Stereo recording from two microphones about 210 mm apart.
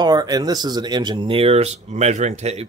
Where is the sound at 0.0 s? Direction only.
20° right (ahead or behind).